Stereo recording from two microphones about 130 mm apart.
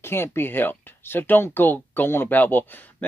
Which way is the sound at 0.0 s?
20° left (ahead or behind).